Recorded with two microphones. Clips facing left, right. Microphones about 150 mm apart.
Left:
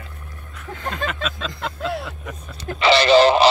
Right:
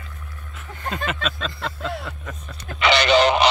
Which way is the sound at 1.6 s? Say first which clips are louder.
Left 5 dB; 5° left (ahead or behind).